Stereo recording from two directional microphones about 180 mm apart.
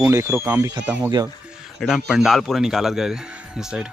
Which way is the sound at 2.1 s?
Centre (ahead or behind).